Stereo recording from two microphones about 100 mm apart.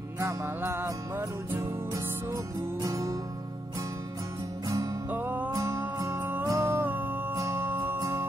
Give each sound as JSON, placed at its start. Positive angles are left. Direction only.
{"t": 0.2, "sound": "music", "side_deg": -25}
{"t": 4.6, "sound": "music", "side_deg": -35}
{"t": 5.1, "sound": "music", "side_deg": -15}
{"t": 5.5, "sound": "music", "side_deg": -30}